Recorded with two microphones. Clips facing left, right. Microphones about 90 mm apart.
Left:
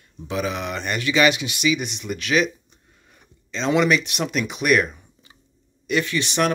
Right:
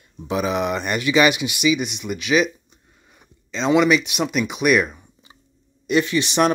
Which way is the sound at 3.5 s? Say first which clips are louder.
Right 3 dB; 5° right (ahead or behind).